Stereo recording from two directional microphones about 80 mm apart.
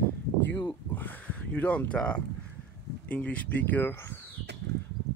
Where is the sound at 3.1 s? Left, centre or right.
Centre.